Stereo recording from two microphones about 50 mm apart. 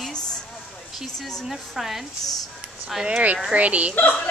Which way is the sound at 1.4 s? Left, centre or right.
Centre.